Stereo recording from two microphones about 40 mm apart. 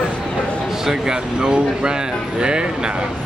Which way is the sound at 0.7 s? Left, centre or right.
Centre.